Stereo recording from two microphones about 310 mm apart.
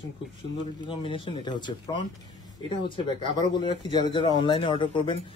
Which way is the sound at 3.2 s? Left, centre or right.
Centre.